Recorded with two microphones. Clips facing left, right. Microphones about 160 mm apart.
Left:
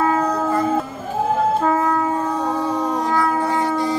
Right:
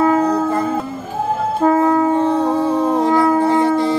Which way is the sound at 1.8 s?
25° right (ahead or behind).